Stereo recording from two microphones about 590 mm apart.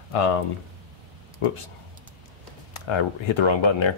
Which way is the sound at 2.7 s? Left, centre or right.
Left.